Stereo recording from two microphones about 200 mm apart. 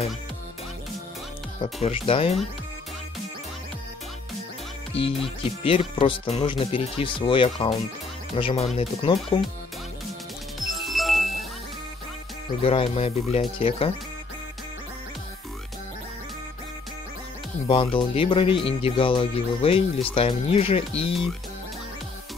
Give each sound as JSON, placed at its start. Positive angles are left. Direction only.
{"t": 1.6, "sound": "speech", "side_deg": 30}
{"t": 5.4, "sound": "speech", "side_deg": 25}
{"t": 10.8, "sound": "music", "side_deg": 0}
{"t": 12.6, "sound": "speech", "side_deg": 30}
{"t": 17.6, "sound": "speech", "side_deg": 25}